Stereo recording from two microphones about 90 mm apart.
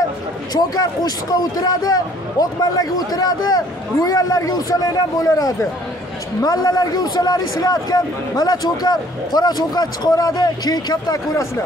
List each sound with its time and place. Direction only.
0.6 s a man's voice: 45° left (ahead or behind)